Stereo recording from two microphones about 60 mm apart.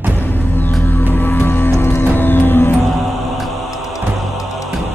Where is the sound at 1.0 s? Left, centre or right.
Left.